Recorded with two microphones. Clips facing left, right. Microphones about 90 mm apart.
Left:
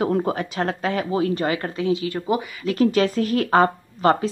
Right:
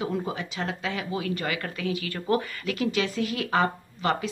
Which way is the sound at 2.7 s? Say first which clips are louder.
Left 9 dB; 40° left (ahead or behind).